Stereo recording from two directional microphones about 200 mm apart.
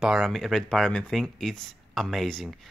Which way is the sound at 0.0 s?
Centre (ahead or behind).